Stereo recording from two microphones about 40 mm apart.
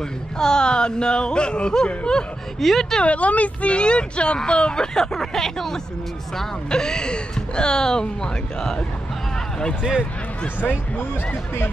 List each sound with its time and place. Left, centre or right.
0.4 s speech: centre
2.6 s speech: centre
3.0 s speech: left; by 5.8 s centre
6.7 s speech: centre
10.6 s speech: left